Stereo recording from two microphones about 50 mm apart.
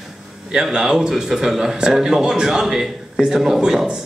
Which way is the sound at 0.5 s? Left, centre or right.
Centre.